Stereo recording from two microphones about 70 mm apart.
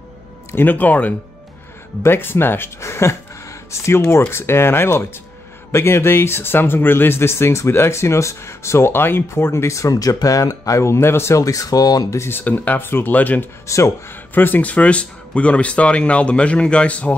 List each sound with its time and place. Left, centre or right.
0.5 s speech: left
2.0 s speech: left
2.8 s a sound: left
3.8 s speech: left
11.4 s speech: left
12.1 s speech: left
13.7 s speech: left
14.3 s speech: left